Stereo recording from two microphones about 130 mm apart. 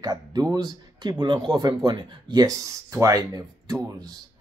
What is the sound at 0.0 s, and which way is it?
A man's voice, 30° right (ahead or behind).